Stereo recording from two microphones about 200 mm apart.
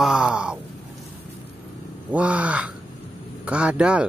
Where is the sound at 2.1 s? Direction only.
5° right (ahead or behind).